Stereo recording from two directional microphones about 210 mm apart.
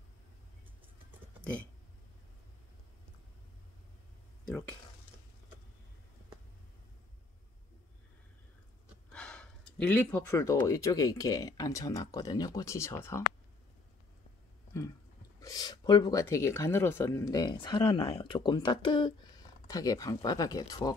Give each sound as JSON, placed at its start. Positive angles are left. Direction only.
{"t": 1.4, "sound": "a sound", "side_deg": 5}
{"t": 4.5, "sound": "speech", "side_deg": 5}
{"t": 9.1, "sound": "speech", "side_deg": 5}
{"t": 15.4, "sound": "speech", "side_deg": 20}